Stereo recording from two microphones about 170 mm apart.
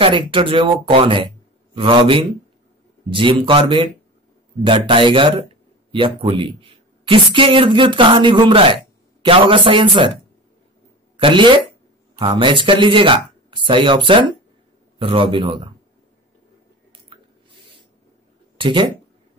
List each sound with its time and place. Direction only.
0.0 s speech: 30° right (ahead or behind)
11.1 s speech: 30° right (ahead or behind)
18.6 s speech: 30° right (ahead or behind)